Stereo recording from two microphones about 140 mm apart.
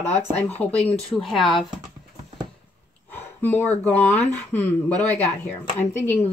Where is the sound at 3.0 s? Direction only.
15° left (ahead or behind).